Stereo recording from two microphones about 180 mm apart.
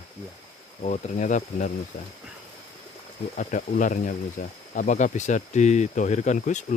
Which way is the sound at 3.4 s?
45° left (ahead or behind).